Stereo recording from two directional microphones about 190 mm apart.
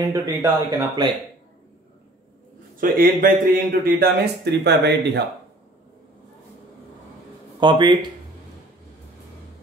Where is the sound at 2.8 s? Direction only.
45° right (ahead or behind).